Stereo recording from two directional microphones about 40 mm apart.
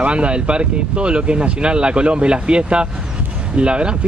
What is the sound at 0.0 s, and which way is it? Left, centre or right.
Speech, right.